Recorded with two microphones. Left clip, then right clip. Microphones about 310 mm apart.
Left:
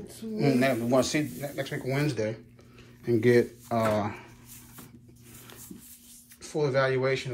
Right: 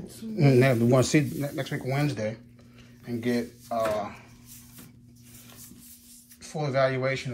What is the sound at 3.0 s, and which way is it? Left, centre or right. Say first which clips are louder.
Speech: left 7 dB; centre.